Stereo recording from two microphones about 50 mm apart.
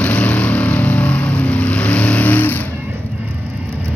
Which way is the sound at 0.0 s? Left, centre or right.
Left.